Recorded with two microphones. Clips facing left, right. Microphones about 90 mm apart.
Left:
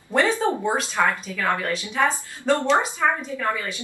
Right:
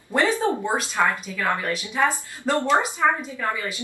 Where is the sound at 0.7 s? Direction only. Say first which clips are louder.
Even; 15° right (ahead or behind).